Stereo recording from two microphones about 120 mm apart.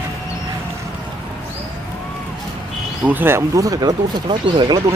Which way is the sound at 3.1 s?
20° right (ahead or behind).